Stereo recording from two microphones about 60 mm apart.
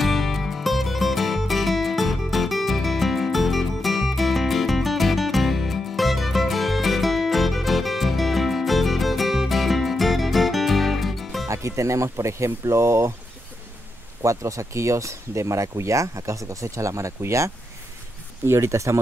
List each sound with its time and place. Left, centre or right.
0.0 s music: centre
11.4 s speech: right
14.2 s speech: right